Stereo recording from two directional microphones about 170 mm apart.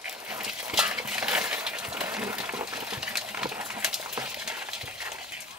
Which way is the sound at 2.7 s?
5° right (ahead or behind).